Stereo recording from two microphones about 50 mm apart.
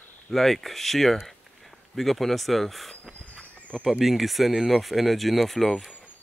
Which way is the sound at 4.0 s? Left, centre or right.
Centre.